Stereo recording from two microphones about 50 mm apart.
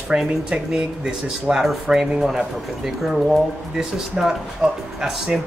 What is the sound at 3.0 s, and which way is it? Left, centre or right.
Speech, centre.